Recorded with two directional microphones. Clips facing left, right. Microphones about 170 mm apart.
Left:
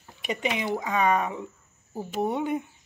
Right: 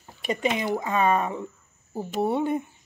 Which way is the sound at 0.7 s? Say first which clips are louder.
Left 1 dB; 50° right (ahead or behind).